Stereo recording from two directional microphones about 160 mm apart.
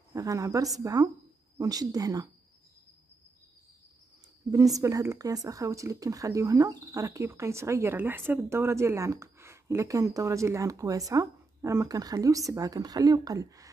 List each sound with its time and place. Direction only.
0.1 s a woman's voice: 20° right (ahead or behind)
4.5 s speech: 20° right (ahead or behind)